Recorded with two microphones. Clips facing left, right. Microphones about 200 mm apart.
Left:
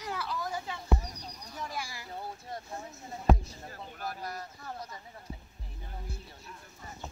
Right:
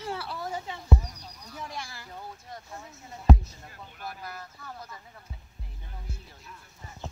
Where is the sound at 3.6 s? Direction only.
40° left (ahead or behind).